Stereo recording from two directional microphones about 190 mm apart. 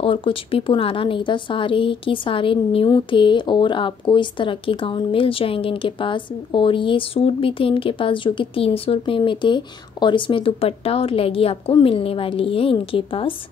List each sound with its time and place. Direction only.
0.0 s a woman's voice: 30° left (ahead or behind)